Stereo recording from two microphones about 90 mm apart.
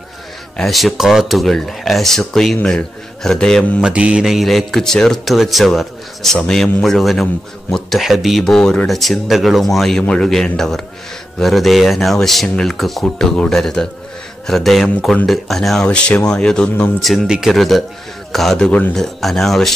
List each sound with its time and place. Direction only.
0.6 s speech: centre (ahead or behind)
3.8 s speech: 10° right (ahead or behind); by 16.9 s 10° left (ahead or behind)
17.0 s speech: centre (ahead or behind)